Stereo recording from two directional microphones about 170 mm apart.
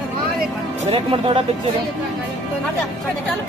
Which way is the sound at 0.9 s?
30° right (ahead or behind).